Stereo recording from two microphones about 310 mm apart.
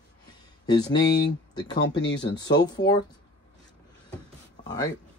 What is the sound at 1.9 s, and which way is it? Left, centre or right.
Speech, left.